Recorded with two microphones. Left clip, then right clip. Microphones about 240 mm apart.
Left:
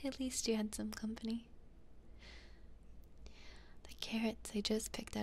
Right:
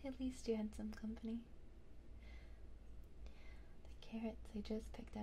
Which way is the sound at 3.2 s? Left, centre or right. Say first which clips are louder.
Left 7 dB; left.